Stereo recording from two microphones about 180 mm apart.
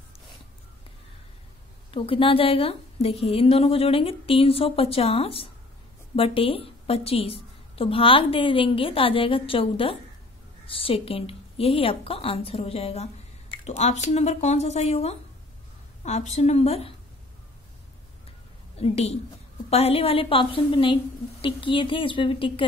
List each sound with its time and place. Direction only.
1.9 s a woman's voice: 30° left (ahead or behind)
18.8 s a woman's voice: 35° left (ahead or behind)